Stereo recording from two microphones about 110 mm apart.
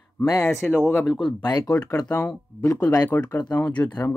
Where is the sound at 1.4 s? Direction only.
35° left (ahead or behind).